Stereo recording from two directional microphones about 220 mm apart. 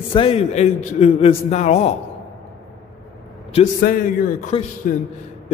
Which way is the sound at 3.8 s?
40° left (ahead or behind).